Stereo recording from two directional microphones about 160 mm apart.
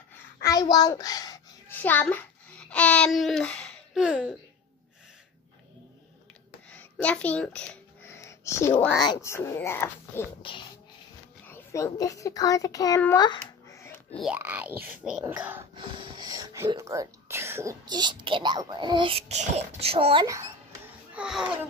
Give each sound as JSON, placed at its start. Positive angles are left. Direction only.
{"t": 0.4, "sound": "a child's voice", "side_deg": 20}
{"t": 1.7, "sound": "a child's voice", "side_deg": 10}
{"t": 6.7, "sound": "a sound", "side_deg": 10}
{"t": 8.9, "sound": "speech", "side_deg": 25}
{"t": 11.4, "sound": "a child's voice", "side_deg": 15}
{"t": 13.1, "sound": "babbling", "side_deg": 25}
{"t": 14.3, "sound": "speech", "side_deg": -10}
{"t": 15.7, "sound": "a sound", "side_deg": -30}
{"t": 16.7, "sound": "speech", "side_deg": -20}
{"t": 17.8, "sound": "a child's voice", "side_deg": -25}
{"t": 20.2, "sound": "a child's voice", "side_deg": -20}
{"t": 21.1, "sound": "a child's voice", "side_deg": -5}